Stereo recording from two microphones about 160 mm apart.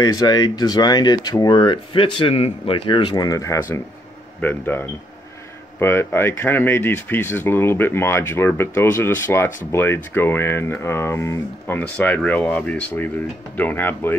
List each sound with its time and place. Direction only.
0.0 s speech: 25° left (ahead or behind)